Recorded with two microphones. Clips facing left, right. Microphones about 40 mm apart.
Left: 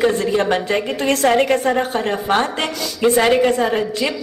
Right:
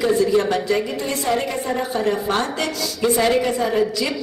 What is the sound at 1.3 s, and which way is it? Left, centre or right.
Speech, left.